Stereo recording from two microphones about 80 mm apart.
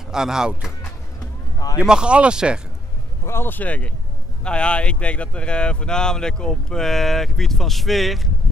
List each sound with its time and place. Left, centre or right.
0.1 s speech: centre
1.8 s speech: centre
3.3 s speech: left; by 8.3 s centre